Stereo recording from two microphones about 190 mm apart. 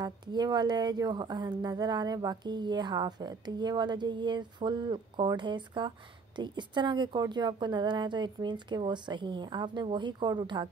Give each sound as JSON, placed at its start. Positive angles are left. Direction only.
{"t": 0.0, "sound": "speech", "side_deg": -20}